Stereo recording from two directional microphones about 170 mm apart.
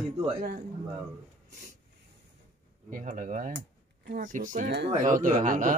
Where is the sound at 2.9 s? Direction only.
50° right (ahead or behind).